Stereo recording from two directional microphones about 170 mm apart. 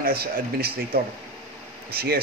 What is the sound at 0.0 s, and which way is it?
Speech, 65° right (ahead or behind).